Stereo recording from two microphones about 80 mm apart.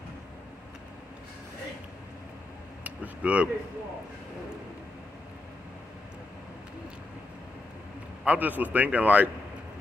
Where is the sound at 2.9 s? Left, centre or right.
Centre.